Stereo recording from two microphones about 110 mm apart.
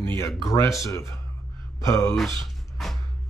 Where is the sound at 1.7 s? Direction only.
30° left (ahead or behind).